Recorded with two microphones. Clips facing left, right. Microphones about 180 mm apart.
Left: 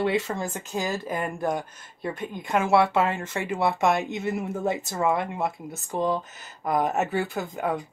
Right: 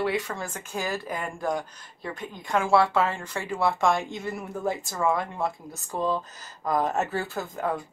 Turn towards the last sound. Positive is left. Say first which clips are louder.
# left 1 dB
turn(degrees=20)  # may be behind; listen again after turning